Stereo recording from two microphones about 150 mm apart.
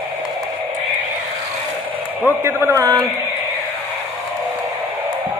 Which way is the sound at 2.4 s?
15° right (ahead or behind).